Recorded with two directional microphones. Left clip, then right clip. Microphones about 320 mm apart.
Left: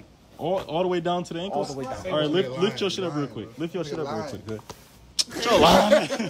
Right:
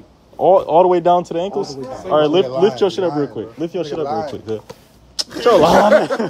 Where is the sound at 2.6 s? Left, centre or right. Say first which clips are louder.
Right 10 dB; centre.